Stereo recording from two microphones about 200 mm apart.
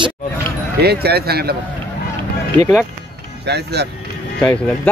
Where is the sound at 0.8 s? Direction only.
50° right (ahead or behind).